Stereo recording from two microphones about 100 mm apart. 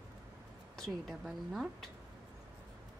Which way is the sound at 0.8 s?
Centre (ahead or behind).